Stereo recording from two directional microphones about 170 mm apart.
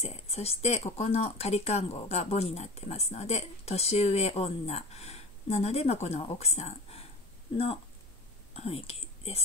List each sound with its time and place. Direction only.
0.0 s speech: 40° left (ahead or behind)
8.5 s speech: 35° left (ahead or behind)